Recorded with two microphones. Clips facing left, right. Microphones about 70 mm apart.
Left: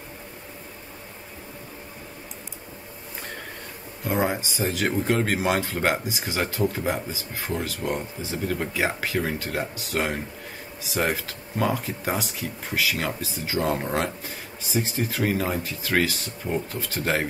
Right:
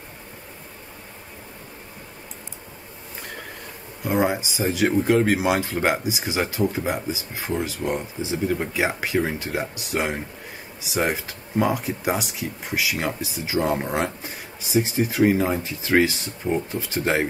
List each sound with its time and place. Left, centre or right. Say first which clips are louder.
4.0 s speech: right 3 dB; centre